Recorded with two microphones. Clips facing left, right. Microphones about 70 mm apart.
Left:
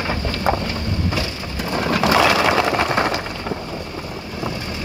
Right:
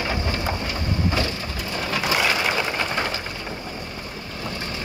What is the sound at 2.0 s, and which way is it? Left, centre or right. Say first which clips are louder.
Vehicle: left 7 dB; left.